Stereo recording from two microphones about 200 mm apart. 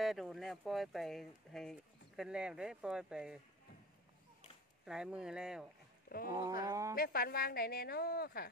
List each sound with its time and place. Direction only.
0.0 s speech: centre (ahead or behind)
4.8 s speech: 5° right (ahead or behind)
6.0 s speech: 45° left (ahead or behind)
6.6 s speech: 15° right (ahead or behind)
7.0 s a woman's voice: 50° left (ahead or behind)